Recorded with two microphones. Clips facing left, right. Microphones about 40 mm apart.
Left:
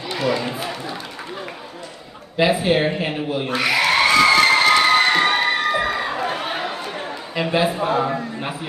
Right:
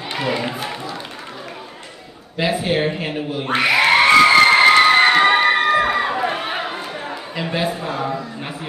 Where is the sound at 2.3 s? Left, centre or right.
Centre.